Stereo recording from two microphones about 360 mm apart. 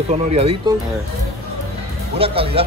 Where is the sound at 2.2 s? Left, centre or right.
Centre.